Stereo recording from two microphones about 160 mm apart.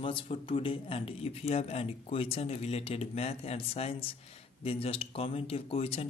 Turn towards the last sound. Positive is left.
turn(degrees=35)  # may be behind; listen again after turning